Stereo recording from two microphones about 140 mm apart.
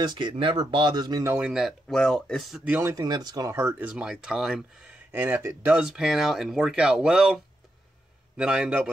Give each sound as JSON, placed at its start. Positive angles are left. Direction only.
{"t": 0.0, "sound": "speech", "side_deg": -30}
{"t": 1.3, "sound": "speech", "side_deg": -5}
{"t": 2.6, "sound": "speech", "side_deg": -15}
{"t": 5.1, "sound": "speech", "side_deg": -15}